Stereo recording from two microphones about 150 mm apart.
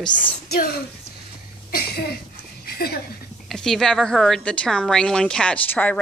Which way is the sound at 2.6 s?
90° left.